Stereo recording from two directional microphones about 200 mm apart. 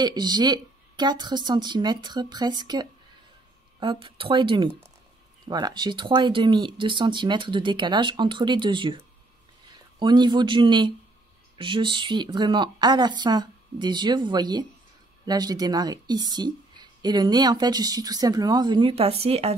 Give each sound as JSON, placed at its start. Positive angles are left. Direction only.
{"t": 0.0, "sound": "a woman's voice", "side_deg": -20}
{"t": 9.9, "sound": "a woman's voice", "side_deg": -20}